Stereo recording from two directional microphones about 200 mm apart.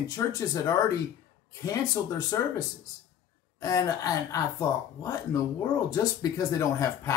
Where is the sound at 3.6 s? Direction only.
15° left (ahead or behind).